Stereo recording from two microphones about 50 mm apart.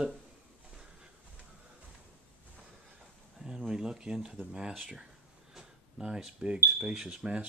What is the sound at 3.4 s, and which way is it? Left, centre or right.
Speech, centre.